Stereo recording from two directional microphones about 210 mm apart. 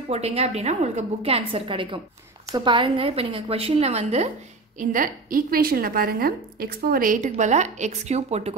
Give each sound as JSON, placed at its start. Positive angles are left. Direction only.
{"t": 0.1, "sound": "a woman's voice", "side_deg": -30}